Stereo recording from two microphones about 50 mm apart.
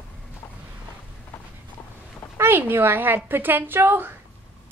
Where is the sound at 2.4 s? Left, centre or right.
Right.